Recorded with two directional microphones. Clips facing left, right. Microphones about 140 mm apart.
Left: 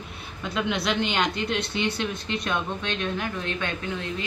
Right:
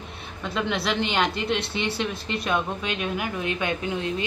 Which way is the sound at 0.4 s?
Centre (ahead or behind).